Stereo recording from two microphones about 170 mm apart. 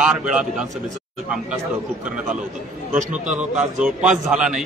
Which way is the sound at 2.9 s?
45° right (ahead or behind).